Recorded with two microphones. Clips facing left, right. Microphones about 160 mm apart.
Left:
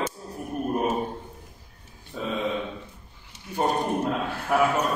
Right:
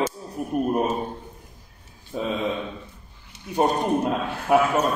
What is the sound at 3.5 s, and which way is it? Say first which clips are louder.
A man's voice: right 3 dB; 15° right (ahead or behind).